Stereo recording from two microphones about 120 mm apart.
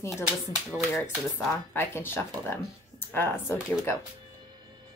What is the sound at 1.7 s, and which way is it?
A woman's voice, 20° left (ahead or behind).